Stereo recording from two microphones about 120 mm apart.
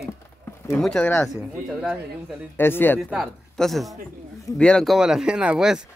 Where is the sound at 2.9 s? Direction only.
Centre (ahead or behind).